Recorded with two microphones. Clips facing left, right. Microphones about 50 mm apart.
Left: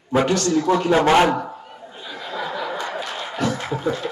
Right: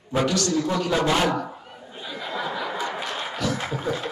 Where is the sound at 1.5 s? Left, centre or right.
Centre.